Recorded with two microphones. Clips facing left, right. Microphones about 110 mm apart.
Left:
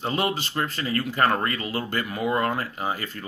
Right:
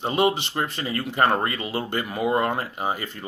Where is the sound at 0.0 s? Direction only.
20° right (ahead or behind).